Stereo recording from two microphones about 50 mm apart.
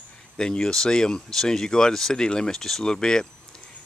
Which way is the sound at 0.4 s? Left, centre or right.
Centre.